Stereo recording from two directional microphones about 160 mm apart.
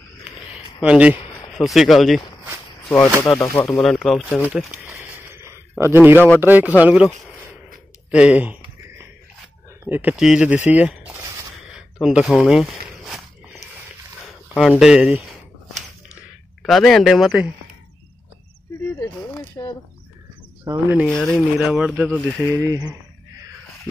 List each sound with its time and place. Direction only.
0.7 s speech: 5° right (ahead or behind)
3.3 s speech: centre (ahead or behind)
4.4 s a sound: 10° right (ahead or behind)
6.4 s speech: 10° right (ahead or behind)
8.1 s a sound: 5° right (ahead or behind)
9.8 s speech: 10° right (ahead or behind)
11.7 s walk: 5° right (ahead or behind)
14.2 s a sound: centre (ahead or behind)
14.8 s speech: 5° right (ahead or behind)
16.6 s speech: centre (ahead or behind)
19.6 s speech: 20° left (ahead or behind)
20.6 s speech: 15° right (ahead or behind)
21.1 s speech: 5° left (ahead or behind)
21.5 s speech: 5° right (ahead or behind); by 22.9 s 25° right (ahead or behind)